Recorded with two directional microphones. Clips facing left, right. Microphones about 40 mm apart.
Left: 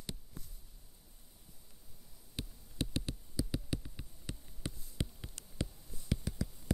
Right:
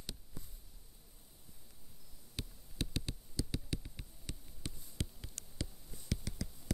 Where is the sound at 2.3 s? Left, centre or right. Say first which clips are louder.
Left 3 dB; left.